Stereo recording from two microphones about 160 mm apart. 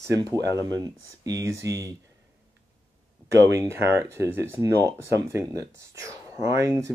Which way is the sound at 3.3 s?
20° right (ahead or behind).